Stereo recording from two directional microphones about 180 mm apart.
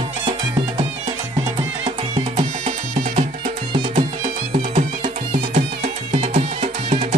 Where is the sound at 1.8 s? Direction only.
35° right (ahead or behind).